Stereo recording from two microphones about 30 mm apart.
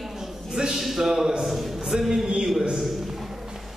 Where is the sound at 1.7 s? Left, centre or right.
Centre.